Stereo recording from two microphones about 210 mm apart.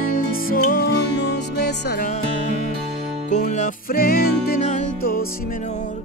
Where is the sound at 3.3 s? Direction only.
35° left (ahead or behind).